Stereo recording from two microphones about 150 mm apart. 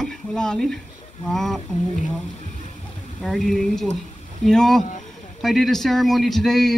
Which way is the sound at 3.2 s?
Centre (ahead or behind).